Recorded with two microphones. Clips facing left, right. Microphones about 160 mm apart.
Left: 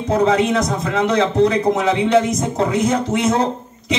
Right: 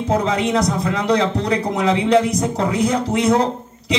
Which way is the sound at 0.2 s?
30° left (ahead or behind).